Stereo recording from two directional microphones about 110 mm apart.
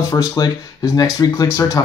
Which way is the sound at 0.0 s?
30° left (ahead or behind).